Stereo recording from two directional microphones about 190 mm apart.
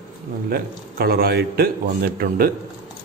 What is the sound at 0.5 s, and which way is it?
A man's voice, 55° right (ahead or behind).